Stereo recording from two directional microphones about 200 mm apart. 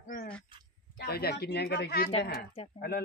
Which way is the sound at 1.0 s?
50° left (ahead or behind).